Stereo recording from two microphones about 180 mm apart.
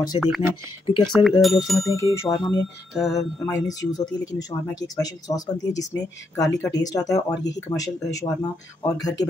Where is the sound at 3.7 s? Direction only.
20° left (ahead or behind).